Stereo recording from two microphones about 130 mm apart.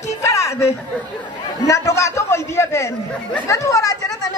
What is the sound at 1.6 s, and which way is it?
Chatter, 25° left (ahead or behind).